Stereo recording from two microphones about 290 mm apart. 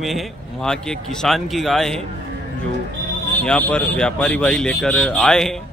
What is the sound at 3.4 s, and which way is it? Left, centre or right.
A man's voice, centre.